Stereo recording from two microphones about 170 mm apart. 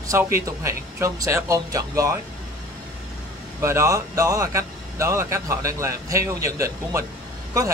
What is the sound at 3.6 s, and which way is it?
Speech, 15° right (ahead or behind).